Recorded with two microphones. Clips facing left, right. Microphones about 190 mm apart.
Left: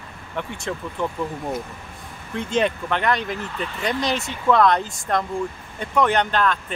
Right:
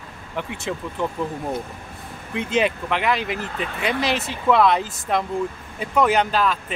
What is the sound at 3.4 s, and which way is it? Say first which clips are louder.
Speech: right 1 dB; 50° right (ahead or behind).